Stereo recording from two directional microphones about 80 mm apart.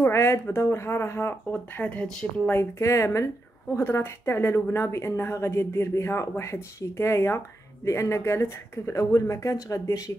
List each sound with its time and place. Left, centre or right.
0.0 s speech: left
1.5 s speech: centre
2.5 s speech: left